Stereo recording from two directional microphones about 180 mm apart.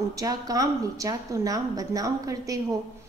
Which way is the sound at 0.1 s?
20° right (ahead or behind).